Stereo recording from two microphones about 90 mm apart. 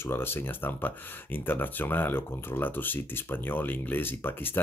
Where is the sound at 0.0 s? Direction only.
25° left (ahead or behind).